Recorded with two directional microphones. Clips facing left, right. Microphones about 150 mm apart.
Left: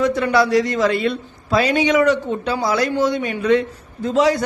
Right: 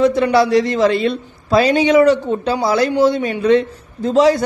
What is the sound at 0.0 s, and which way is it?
A woman's voice, 30° right (ahead or behind).